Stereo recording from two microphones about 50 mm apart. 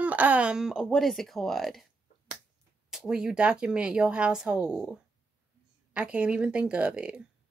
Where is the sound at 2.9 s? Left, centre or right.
Centre.